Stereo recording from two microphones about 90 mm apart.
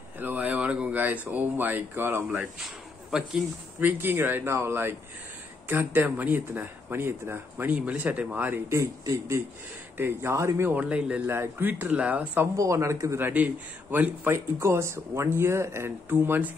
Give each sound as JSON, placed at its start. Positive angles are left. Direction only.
{"t": 0.2, "sound": "speech", "side_deg": -20}
{"t": 3.1, "sound": "speech", "side_deg": -5}
{"t": 3.8, "sound": "speech", "side_deg": -25}
{"t": 8.6, "sound": "speech", "side_deg": -35}
{"t": 10.8, "sound": "speech", "side_deg": -15}
{"t": 11.2, "sound": "speech", "side_deg": -25}
{"t": 12.5, "sound": "speech", "side_deg": -35}
{"t": 13.3, "sound": "speech", "side_deg": -15}
{"t": 14.3, "sound": "speech", "side_deg": -30}